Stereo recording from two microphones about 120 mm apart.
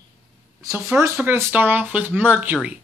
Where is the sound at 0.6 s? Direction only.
25° right (ahead or behind).